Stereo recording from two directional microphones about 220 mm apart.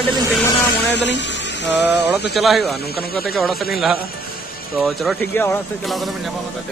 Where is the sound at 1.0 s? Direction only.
55° left (ahead or behind).